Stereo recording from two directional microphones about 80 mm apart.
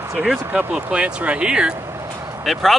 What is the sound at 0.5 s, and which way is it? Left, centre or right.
Speech, centre.